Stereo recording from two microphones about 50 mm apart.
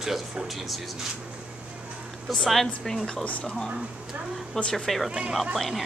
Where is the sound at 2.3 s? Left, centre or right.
Centre.